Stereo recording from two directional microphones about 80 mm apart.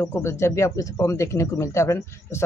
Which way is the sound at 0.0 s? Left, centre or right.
Left.